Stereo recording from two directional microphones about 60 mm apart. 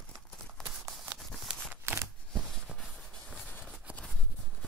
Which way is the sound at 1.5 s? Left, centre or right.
Centre.